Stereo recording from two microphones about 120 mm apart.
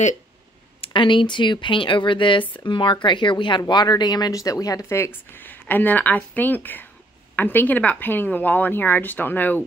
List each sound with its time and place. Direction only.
0.7 s a woman's voice: 45° left (ahead or behind); by 9.6 s 15° left (ahead or behind)